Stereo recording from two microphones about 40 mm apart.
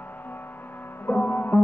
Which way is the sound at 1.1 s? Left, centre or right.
Left.